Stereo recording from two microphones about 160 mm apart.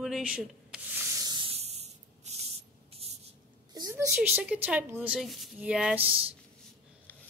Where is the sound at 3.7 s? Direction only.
20° right (ahead or behind).